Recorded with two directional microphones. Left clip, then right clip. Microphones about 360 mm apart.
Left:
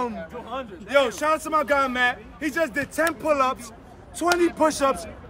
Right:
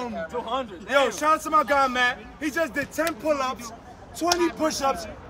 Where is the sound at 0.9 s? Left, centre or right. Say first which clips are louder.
Even; centre.